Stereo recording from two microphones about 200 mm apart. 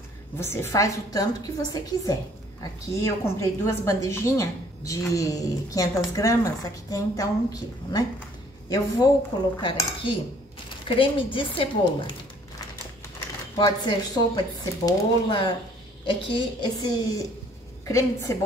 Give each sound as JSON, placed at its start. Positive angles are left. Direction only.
{"t": 0.4, "sound": "a woman's voice", "side_deg": 15}
{"t": 13.6, "sound": "a woman's voice", "side_deg": 20}